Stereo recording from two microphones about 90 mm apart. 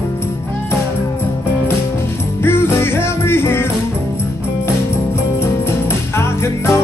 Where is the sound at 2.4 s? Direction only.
25° left (ahead or behind).